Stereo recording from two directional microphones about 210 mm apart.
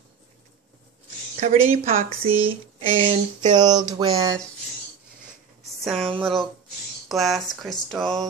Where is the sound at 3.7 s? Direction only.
35° right (ahead or behind).